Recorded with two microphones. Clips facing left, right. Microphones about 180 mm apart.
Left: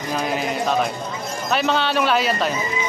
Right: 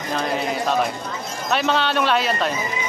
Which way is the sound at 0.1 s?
5° left (ahead or behind).